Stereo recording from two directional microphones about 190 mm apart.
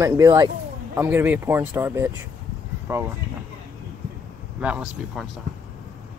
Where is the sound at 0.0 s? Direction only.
15° right (ahead or behind).